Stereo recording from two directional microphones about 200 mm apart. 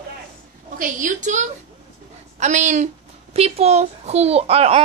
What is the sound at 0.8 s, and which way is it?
A woman's voice, 40° right (ahead or behind).